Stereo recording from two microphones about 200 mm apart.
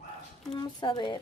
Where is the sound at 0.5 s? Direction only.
20° left (ahead or behind).